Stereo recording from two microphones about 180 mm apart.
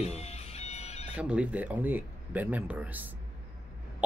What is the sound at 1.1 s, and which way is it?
Speech, 5° right (ahead or behind).